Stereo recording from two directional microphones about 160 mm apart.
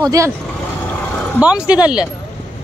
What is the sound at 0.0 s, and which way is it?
Speech, 20° right (ahead or behind).